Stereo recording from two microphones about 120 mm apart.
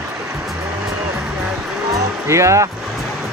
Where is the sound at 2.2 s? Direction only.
25° right (ahead or behind).